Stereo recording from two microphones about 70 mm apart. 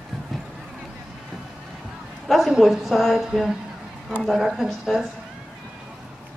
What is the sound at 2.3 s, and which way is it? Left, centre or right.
A woman's voice, centre.